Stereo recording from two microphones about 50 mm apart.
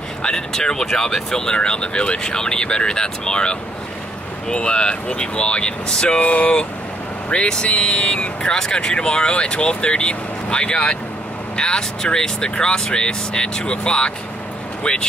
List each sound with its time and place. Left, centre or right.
0.2 s speech: centre
6.2 s speech: left
7.2 s speech: centre